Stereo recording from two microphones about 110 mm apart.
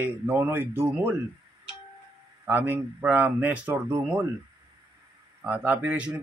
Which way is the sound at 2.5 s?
15° right (ahead or behind).